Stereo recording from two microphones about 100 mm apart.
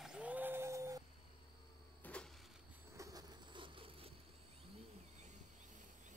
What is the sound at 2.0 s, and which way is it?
Insect, 10° left (ahead or behind).